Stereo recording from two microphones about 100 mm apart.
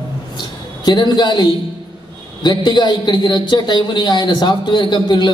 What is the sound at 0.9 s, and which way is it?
A man's voice, 50° left (ahead or behind).